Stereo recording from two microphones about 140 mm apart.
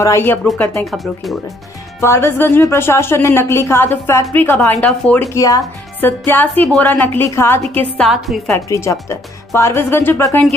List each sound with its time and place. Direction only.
0.0 s speech: 20° left (ahead or behind)
2.0 s speech: 15° left (ahead or behind)
5.3 s speech: 20° left (ahead or behind)